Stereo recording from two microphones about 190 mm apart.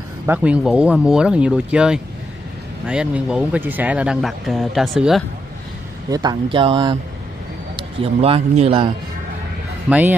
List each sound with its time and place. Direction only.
0.3 s speech: 5° right (ahead or behind)
6.0 s a man's voice: 20° right (ahead or behind)
9.8 s speech: 5° right (ahead or behind)